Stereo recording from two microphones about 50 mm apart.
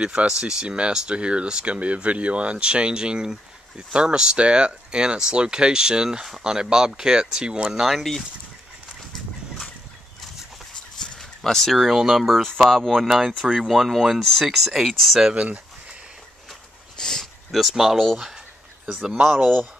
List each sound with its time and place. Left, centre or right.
0.0 s speech: right
7.8 s speech: centre
11.0 s speech: centre
15.3 s a sound: right
16.9 s dog: centre
17.5 s speech: centre
19.0 s speech: centre